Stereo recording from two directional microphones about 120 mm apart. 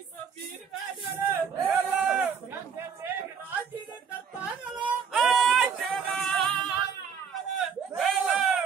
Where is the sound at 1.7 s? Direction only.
10° right (ahead or behind).